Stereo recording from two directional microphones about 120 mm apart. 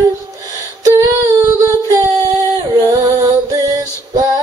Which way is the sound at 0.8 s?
30° right (ahead or behind).